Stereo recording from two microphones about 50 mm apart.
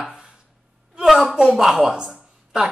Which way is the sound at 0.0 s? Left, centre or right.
Centre.